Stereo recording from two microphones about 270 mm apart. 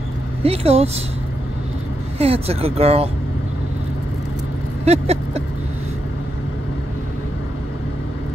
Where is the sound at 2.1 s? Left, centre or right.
Right.